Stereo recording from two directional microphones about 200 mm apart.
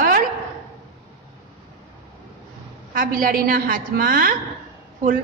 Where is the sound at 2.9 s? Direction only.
45° right (ahead or behind).